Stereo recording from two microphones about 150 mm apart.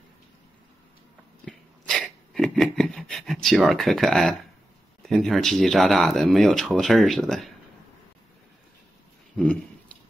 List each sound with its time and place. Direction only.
1.4 s sneeze: 5° left (ahead or behind)
5.0 s speech: centre (ahead or behind)